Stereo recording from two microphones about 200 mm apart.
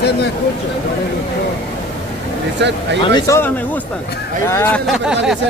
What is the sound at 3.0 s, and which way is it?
Speech, 20° left (ahead or behind).